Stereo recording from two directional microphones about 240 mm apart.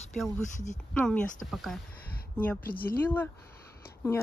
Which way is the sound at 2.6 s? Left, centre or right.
Left.